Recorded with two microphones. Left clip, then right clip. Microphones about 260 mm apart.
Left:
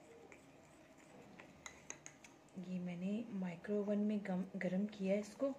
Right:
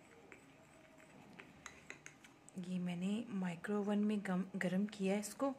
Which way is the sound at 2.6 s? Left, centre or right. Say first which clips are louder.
Right 2 dB; right.